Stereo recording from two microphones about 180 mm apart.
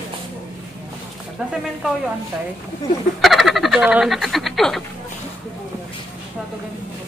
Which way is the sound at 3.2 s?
Centre (ahead or behind).